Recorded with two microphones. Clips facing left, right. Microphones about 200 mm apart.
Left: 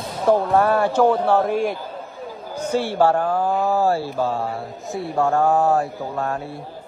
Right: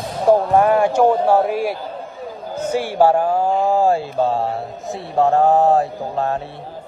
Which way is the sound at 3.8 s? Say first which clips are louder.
Right 3 dB; 15° right (ahead or behind).